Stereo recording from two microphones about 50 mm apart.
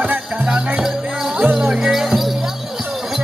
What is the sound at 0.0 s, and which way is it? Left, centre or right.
Music, right.